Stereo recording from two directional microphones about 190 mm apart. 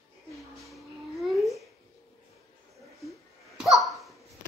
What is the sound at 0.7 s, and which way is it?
Babbling, centre (ahead or behind).